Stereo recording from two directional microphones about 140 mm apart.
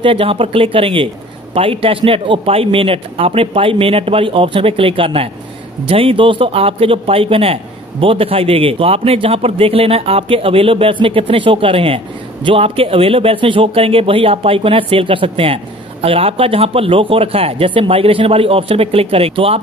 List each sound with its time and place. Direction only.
0.0 s speech: 40° right (ahead or behind)